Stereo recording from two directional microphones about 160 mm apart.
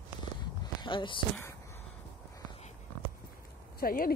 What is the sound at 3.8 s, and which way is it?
Speech, 70° left (ahead or behind).